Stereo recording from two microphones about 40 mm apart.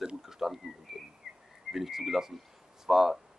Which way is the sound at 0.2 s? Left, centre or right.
Centre.